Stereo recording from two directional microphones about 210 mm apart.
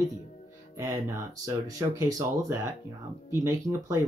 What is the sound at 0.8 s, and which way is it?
Speech, 15° right (ahead or behind).